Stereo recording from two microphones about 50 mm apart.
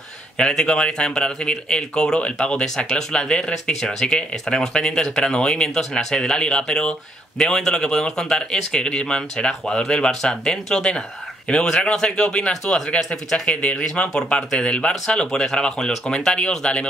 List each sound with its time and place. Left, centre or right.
0.4 s speech: centre
13.6 s speech: left
14.1 s speech: centre